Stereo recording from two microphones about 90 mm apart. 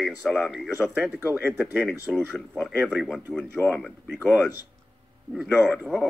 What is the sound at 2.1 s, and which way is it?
Speech, 5° left (ahead or behind).